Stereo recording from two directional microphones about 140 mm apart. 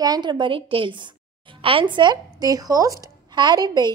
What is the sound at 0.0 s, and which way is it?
A woman's voice, 30° right (ahead or behind).